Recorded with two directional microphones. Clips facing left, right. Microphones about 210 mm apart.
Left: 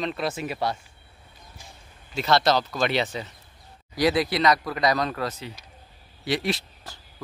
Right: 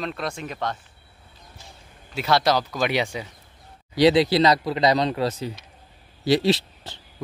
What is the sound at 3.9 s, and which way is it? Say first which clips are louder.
A man's voice: right 6 dB; 25° right (ahead or behind).